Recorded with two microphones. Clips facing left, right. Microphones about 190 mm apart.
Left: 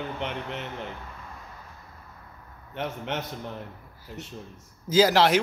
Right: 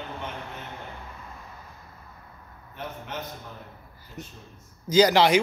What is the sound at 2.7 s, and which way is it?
Speech, 75° left (ahead or behind).